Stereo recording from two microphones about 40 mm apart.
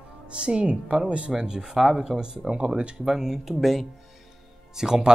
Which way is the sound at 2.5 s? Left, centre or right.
Right.